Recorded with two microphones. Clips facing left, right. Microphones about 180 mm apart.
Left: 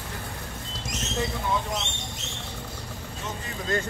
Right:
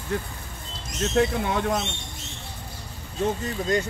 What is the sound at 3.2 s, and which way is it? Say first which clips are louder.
Speech: right 12 dB; 60° right (ahead or behind).